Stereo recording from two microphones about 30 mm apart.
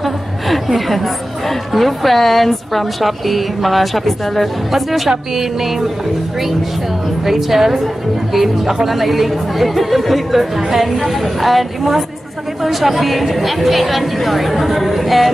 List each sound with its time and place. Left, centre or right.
0.0 s a woman's voice: centre
7.2 s a woman's voice: centre
12.6 s a woman's voice: centre